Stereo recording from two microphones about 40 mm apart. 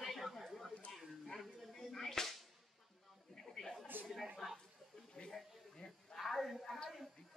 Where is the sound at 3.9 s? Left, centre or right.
Right.